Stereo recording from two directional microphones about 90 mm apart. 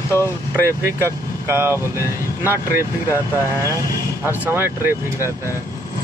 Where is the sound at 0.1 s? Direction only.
30° left (ahead or behind).